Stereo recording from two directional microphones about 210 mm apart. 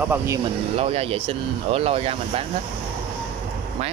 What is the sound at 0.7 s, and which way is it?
Speech, 30° right (ahead or behind).